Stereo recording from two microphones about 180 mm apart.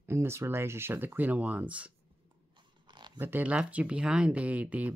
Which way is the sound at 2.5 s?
25° right (ahead or behind).